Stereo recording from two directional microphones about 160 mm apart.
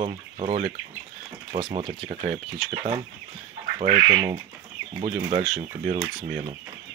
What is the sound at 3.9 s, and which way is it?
Speech, 25° right (ahead or behind).